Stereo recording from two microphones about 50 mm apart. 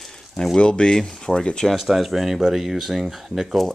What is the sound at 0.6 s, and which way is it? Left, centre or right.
Speech, centre.